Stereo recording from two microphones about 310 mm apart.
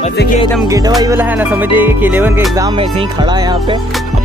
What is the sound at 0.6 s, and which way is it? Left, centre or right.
Music, centre.